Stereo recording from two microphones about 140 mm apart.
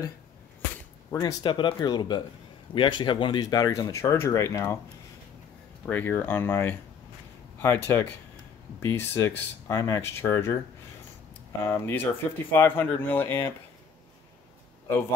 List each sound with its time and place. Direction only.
1.1 s speech: 30° left (ahead or behind)
5.9 s speech: 15° left (ahead or behind)
11.6 s speech: 15° left (ahead or behind)